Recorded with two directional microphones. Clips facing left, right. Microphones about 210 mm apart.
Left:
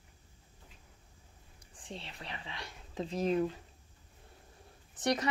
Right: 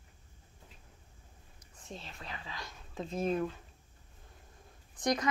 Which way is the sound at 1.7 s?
30° left (ahead or behind).